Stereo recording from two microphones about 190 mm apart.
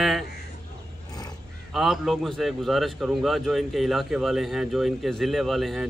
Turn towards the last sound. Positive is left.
turn(degrees=0)  # may be behind; listen again after turning